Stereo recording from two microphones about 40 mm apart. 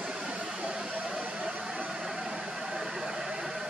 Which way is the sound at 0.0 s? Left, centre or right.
Right.